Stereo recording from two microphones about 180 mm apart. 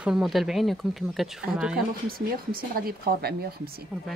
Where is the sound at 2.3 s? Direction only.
55° right (ahead or behind).